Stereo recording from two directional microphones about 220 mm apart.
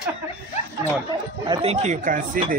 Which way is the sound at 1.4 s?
25° right (ahead or behind).